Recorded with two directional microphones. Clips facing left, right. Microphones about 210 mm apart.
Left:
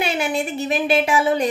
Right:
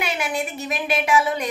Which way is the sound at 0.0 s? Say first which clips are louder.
Left 4 dB; 30° left (ahead or behind).